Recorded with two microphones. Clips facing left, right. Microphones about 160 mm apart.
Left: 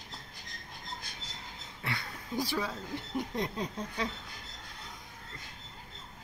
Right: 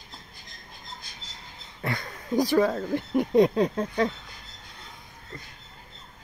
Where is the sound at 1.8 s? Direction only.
45° right (ahead or behind).